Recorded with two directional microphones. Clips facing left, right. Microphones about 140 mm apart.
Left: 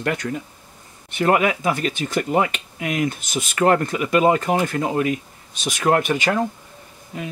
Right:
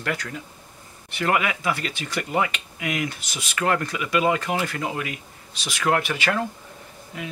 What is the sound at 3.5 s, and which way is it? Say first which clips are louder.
Speech: left 6 dB; 35° left (ahead or behind).